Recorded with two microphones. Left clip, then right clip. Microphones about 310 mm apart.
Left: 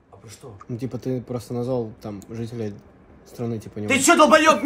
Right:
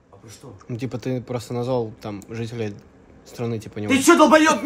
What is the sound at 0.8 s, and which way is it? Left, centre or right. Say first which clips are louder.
Speech: right 1 dB; centre.